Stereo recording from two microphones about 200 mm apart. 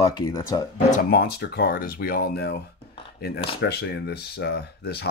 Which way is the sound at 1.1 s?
55° left (ahead or behind).